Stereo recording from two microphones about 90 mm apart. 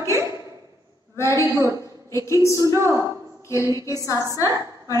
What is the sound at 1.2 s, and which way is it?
A woman's voice, 35° left (ahead or behind).